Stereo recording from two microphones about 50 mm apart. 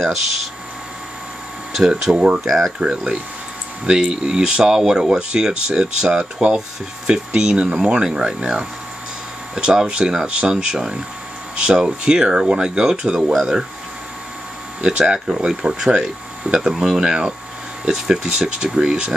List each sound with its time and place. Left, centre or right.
1.8 s speech: centre
2.1 s speech: right
2.4 s speech: centre
14.8 s speech: centre
15.1 s speech: centre